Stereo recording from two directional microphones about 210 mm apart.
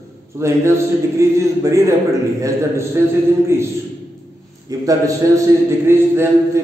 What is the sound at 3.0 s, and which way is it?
Speech, 15° right (ahead or behind).